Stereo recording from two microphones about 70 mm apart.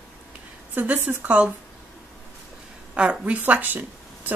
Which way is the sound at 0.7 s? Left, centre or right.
Right.